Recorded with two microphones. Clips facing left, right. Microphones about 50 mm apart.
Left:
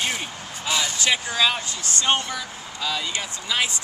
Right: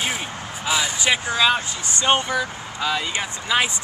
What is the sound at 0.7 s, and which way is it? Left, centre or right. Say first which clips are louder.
Speech: right 2 dB; centre.